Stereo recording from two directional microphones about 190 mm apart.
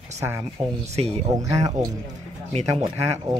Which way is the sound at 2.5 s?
30° right (ahead or behind).